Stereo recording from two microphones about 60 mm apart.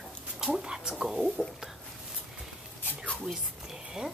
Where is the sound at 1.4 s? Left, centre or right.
Centre.